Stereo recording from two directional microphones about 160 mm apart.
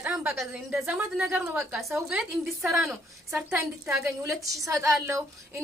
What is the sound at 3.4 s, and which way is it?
A woman's voice, 15° right (ahead or behind).